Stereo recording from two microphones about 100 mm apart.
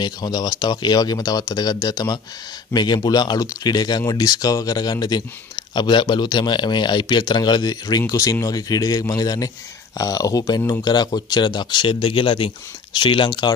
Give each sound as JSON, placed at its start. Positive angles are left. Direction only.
{"t": 0.0, "sound": "a man's voice", "side_deg": 45}